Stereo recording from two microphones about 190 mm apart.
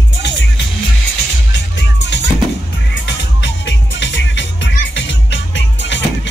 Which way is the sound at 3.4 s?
65° left (ahead or behind).